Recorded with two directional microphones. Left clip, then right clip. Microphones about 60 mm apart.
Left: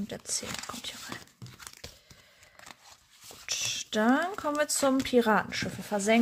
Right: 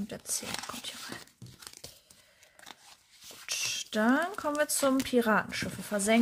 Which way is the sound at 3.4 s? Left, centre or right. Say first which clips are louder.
Left 1 dB; centre.